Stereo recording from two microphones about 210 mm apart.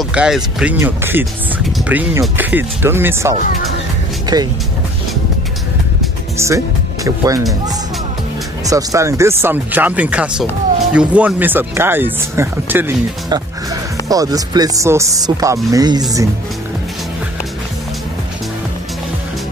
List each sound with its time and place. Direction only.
0.0 s speech: 5° right (ahead or behind)
6.3 s speech: 15° right (ahead or behind)
8.6 s speech: 15° right (ahead or behind)